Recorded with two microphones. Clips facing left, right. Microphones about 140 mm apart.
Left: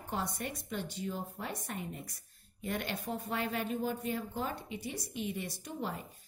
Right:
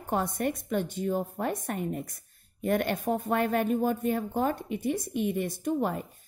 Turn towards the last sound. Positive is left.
turn(degrees=-55)  # may be behind; listen again after turning